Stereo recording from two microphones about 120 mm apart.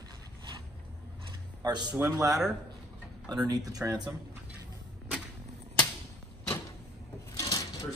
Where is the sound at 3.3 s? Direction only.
30° right (ahead or behind).